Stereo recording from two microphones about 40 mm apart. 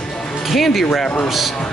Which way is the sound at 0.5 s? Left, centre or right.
Centre.